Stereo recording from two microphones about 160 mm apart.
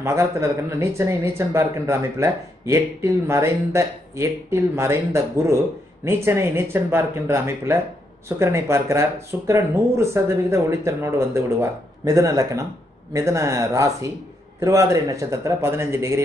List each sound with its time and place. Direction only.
0.0 s speech: 20° right (ahead or behind)